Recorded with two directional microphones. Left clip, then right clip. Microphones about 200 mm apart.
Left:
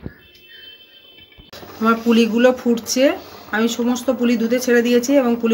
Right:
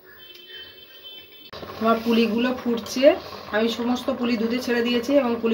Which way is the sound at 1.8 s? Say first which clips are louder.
Left 4 dB; 60° left (ahead or behind).